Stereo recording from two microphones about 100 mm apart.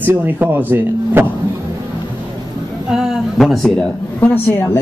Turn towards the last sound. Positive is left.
turn(degrees=10)  # may be behind; listen again after turning